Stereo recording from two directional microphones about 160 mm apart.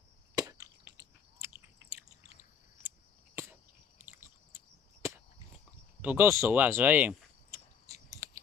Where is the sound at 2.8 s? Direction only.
15° right (ahead or behind).